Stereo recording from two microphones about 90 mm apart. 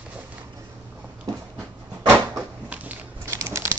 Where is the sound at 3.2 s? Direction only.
30° right (ahead or behind).